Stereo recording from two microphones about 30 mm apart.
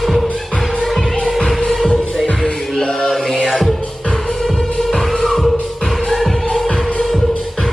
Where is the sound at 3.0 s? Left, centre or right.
Centre.